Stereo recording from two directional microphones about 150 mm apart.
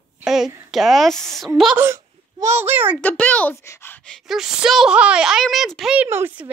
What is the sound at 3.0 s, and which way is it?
A child's voice, 10° left (ahead or behind).